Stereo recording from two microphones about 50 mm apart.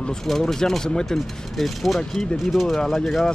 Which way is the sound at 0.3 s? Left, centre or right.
Centre.